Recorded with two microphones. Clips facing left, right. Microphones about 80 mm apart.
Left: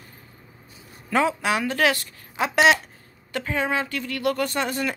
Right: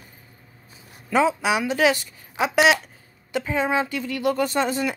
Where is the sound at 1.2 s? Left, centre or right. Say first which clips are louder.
Right 3 dB; centre.